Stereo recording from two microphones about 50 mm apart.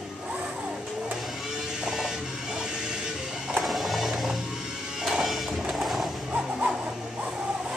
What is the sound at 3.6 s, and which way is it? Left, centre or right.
Music, centre.